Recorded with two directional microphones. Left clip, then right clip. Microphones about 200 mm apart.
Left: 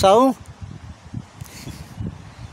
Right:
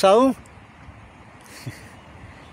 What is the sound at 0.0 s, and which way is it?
Speech, 5° left (ahead or behind).